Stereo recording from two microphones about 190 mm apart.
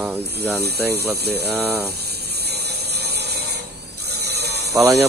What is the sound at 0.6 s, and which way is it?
Speech, 60° right (ahead or behind).